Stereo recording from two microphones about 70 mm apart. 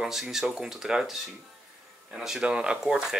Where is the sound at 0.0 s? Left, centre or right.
Centre.